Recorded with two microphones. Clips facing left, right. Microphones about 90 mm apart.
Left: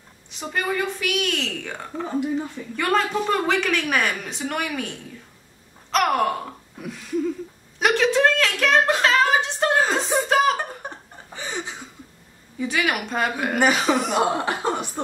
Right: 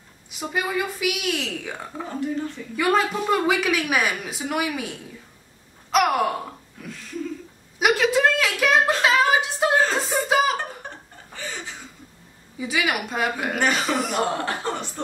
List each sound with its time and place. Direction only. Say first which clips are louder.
0.3 s speech: even; 5° right (ahead or behind)
2.0 s speech: left 3 dB; 15° left (ahead or behind)
2.7 s speech: right 1 dB; 5° right (ahead or behind)
5.9 s gasp: even; 5° right (ahead or behind)
7.8 s a sound: left 1 dB; 5° right (ahead or behind)
10.8 s chuckle: left 3 dB; 15° left (ahead or behind)
12.5 s speech: left 1 dB; 5° right (ahead or behind)
13.6 s speech: left 4 dB; 5° left (ahead or behind)